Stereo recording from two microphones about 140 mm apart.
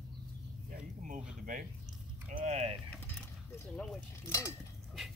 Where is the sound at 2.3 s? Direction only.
55° right (ahead or behind).